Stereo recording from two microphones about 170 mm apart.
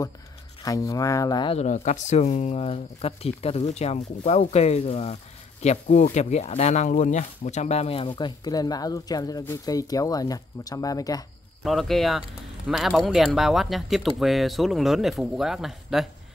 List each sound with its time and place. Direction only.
0.7 s speech: 20° left (ahead or behind)
1.6 s speech: 45° left (ahead or behind)
8.2 s speech: 20° left (ahead or behind)
11.6 s speech: centre (ahead or behind)